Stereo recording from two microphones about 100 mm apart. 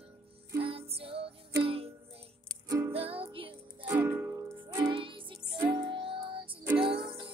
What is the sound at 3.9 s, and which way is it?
Music, 25° right (ahead or behind).